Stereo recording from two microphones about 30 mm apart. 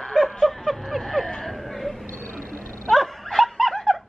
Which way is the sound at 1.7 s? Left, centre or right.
Centre.